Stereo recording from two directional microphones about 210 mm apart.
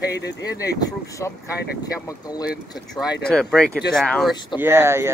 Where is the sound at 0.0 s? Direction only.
55° left (ahead or behind).